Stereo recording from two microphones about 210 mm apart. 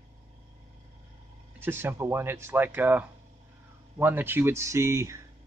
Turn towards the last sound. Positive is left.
turn(degrees=-15)  # may be behind; listen again after turning